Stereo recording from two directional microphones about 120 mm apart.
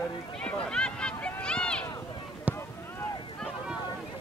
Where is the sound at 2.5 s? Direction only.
10° right (ahead or behind).